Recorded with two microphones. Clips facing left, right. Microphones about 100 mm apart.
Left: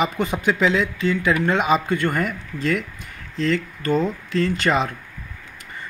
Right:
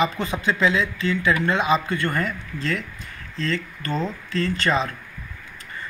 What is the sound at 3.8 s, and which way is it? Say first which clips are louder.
Speech: left 6 dB; 15° left (ahead or behind).